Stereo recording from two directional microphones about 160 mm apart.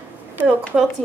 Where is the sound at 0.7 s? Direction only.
5° right (ahead or behind).